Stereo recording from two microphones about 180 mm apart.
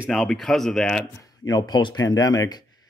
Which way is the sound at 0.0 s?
Centre (ahead or behind).